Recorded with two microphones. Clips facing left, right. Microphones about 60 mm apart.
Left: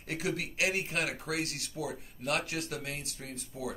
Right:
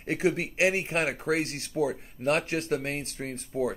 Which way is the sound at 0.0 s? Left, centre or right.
Right.